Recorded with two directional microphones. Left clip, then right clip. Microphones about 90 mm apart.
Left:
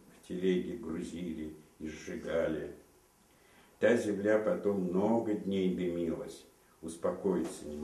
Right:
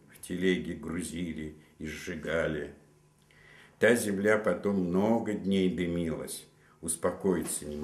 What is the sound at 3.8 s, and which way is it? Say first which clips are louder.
Speech: right 3 dB; 35° right (ahead or behind).